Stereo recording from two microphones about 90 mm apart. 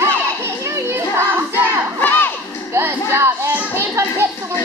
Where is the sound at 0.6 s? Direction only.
30° right (ahead or behind).